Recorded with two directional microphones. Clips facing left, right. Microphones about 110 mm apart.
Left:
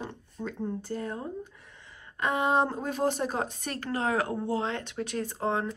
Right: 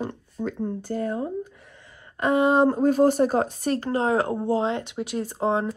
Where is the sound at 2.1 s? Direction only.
45° right (ahead or behind).